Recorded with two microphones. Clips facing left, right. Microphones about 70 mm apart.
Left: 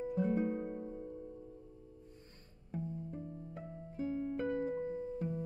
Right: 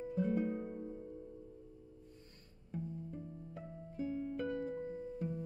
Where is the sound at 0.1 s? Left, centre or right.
Left.